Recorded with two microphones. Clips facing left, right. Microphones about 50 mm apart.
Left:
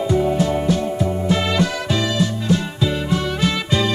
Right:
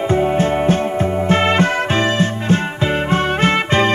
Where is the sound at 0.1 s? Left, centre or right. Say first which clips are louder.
Right 3 dB; right.